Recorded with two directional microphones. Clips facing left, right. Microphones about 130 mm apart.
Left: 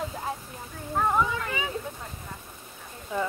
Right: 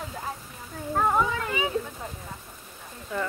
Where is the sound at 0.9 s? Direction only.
10° right (ahead or behind).